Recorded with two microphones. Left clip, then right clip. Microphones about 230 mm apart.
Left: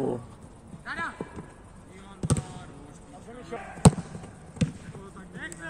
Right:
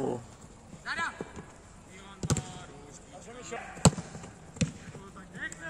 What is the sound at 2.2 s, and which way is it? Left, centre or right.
Basketball bounce, centre.